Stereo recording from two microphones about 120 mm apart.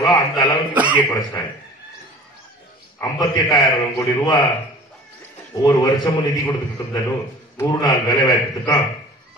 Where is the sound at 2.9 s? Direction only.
35° left (ahead or behind).